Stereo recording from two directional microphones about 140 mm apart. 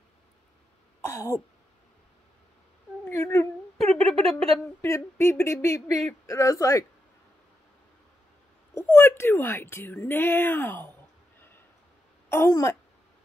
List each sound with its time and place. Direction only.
1.0 s throat clearing: 20° left (ahead or behind)
3.1 s speech: 20° left (ahead or behind)
3.8 s a sound: 5° left (ahead or behind)
4.8 s speech: 20° left (ahead or behind)
8.7 s a woman's voice: 15° left (ahead or behind)
12.3 s speech: 20° left (ahead or behind)